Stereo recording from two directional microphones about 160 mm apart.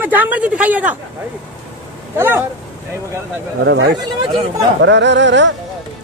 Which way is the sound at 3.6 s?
90° right.